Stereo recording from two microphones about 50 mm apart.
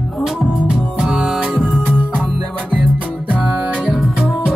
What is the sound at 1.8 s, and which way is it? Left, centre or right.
Music, right.